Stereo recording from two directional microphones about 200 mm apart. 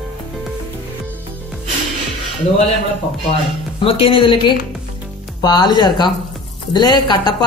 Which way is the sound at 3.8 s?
25° left (ahead or behind).